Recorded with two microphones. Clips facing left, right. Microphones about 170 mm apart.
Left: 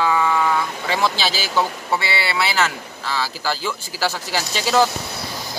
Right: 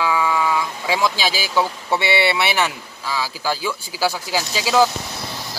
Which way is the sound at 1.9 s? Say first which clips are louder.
Right 7 dB; 25° right (ahead or behind).